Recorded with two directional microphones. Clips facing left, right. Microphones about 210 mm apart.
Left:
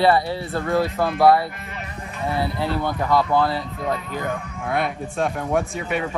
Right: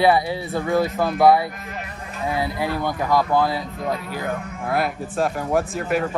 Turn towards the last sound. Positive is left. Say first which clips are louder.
# right 3 dB
turn(degrees=0)  # may be behind; listen again after turning